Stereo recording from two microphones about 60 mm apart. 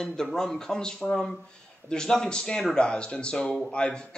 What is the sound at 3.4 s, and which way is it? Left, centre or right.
Speech, centre.